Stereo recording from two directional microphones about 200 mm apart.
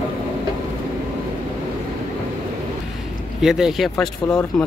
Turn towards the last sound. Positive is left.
turn(degrees=0)  # may be behind; listen again after turning